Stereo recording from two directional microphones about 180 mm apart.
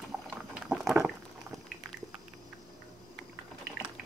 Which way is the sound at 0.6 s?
5° right (ahead or behind).